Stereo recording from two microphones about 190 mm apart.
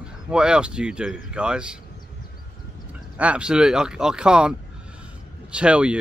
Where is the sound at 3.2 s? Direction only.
5° right (ahead or behind).